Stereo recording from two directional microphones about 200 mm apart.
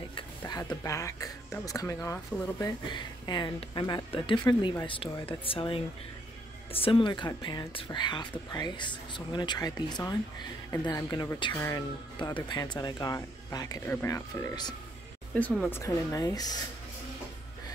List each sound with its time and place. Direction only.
0.1 s speech: 20° left (ahead or behind)
15.3 s speech: 5° left (ahead or behind)
15.7 s speech: 15° left (ahead or behind)